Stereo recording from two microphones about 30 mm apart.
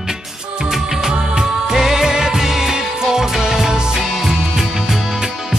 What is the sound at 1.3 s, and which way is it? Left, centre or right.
Music, right.